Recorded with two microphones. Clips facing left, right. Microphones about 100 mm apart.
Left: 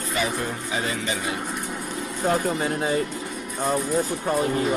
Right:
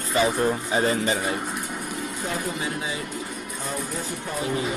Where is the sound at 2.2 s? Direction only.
50° left (ahead or behind).